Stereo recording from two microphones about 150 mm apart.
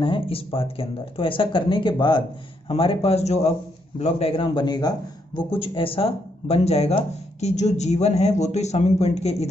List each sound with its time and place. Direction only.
0.0 s a man's voice: 35° left (ahead or behind)